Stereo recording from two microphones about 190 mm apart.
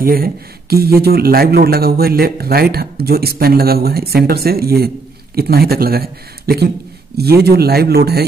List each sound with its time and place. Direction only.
0.0 s speech: 50° right (ahead or behind)